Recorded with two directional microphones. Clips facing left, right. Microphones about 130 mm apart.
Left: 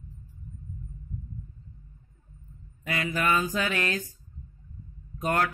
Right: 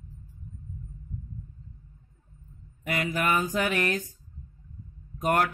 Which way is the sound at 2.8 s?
20° right (ahead or behind).